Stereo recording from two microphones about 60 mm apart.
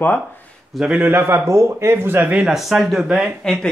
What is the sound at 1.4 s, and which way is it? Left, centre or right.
Speech, right.